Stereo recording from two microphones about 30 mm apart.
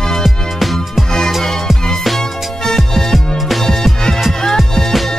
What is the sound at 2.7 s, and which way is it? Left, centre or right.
Music, centre.